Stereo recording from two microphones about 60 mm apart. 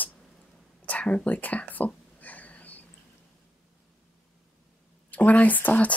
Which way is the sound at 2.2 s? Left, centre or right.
Left.